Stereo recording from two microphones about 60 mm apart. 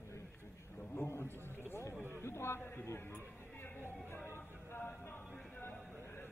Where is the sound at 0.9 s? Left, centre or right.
Left.